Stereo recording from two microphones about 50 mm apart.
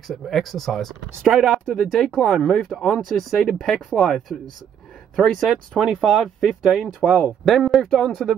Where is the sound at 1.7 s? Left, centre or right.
Centre.